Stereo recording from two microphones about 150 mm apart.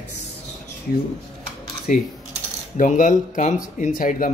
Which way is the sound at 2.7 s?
60° left (ahead or behind).